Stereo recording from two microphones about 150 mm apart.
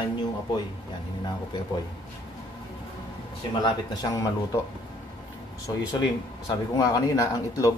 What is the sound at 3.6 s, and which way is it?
Speech, 25° left (ahead or behind).